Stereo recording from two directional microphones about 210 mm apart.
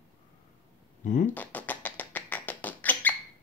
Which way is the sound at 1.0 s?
35° left (ahead or behind).